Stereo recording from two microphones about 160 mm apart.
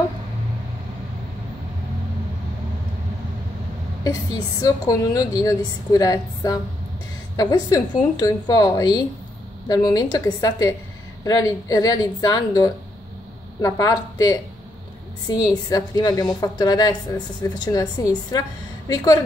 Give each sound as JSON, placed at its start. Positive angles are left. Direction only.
{"t": 4.0, "sound": "a woman's voice", "side_deg": 20}